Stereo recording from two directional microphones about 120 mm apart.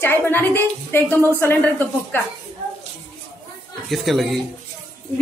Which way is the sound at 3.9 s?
Centre (ahead or behind).